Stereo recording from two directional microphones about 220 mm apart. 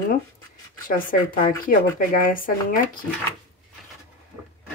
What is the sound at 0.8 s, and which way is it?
Speech, 40° left (ahead or behind).